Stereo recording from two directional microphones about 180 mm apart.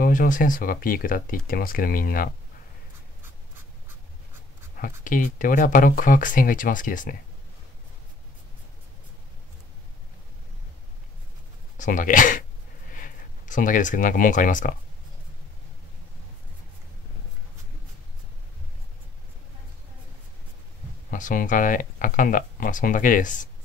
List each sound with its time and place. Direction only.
0.0 s speech: 50° left (ahead or behind)
4.7 s speech: 50° left (ahead or behind)
11.8 s speech: 45° left (ahead or behind)
21.1 s speech: 45° left (ahead or behind)